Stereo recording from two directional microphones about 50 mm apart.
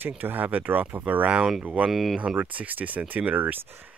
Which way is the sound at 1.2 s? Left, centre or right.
Right.